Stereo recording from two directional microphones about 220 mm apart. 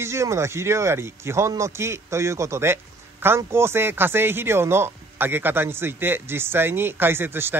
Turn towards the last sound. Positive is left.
turn(degrees=-10)  # may be behind; listen again after turning